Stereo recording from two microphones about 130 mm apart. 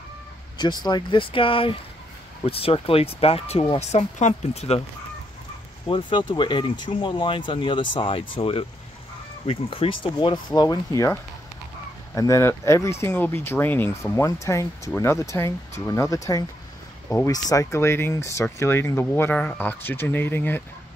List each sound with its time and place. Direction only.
0.6 s speech: 35° left (ahead or behind); by 4.8 s 55° left (ahead or behind)
5.9 s speech: 40° left (ahead or behind)
12.2 s speech: 20° left (ahead or behind)